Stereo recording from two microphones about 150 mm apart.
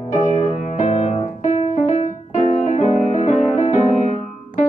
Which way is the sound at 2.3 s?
50° left (ahead or behind).